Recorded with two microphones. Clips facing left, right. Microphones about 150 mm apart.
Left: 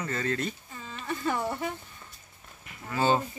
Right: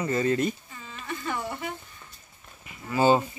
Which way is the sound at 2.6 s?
5° right (ahead or behind).